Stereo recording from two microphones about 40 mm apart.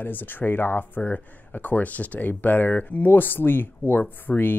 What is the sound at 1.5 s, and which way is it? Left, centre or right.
Speech, left.